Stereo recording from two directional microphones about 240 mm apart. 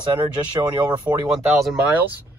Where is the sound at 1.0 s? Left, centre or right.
Centre.